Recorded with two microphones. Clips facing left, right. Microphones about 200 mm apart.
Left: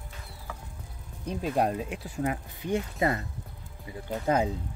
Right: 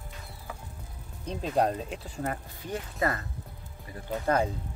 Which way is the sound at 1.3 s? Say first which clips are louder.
Even; 10° left (ahead or behind).